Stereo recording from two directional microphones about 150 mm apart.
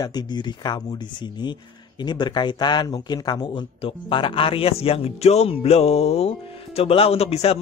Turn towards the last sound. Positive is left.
turn(degrees=40)  # may be behind; listen again after turning